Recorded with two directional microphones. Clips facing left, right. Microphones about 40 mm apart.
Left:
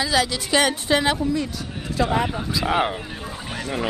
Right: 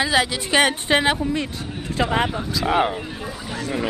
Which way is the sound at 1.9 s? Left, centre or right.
Right.